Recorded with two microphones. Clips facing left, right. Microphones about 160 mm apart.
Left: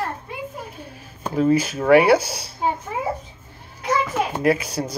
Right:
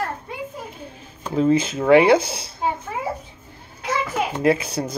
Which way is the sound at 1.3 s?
25° right (ahead or behind).